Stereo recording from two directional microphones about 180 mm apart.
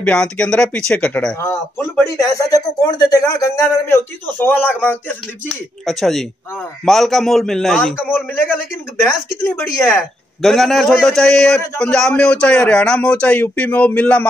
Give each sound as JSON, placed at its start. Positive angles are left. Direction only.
{"t": 0.0, "sound": "speech", "side_deg": 5}
{"t": 2.1, "sound": "a man's voice", "side_deg": 20}
{"t": 10.4, "sound": "a man's voice", "side_deg": 0}